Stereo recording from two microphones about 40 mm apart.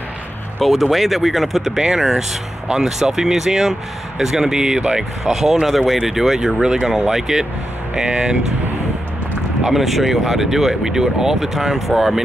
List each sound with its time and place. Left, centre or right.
0.6 s speech: centre
4.7 s speech: right
5.2 s speech: centre
9.7 s speech: centre